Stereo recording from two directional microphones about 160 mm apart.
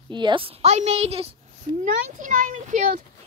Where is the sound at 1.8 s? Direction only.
60° right (ahead or behind).